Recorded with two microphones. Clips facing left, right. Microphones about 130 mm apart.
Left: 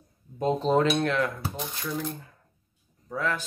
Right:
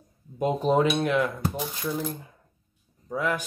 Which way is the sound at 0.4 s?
15° right (ahead or behind).